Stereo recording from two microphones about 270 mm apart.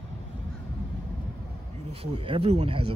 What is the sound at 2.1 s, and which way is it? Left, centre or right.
Speech, centre.